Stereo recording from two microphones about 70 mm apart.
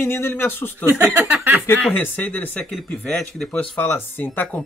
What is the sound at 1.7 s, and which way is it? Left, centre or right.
Speech, left.